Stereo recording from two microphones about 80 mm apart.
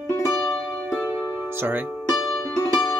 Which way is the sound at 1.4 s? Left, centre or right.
Right.